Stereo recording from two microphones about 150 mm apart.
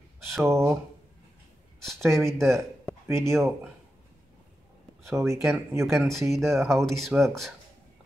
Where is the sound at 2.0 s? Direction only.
20° right (ahead or behind).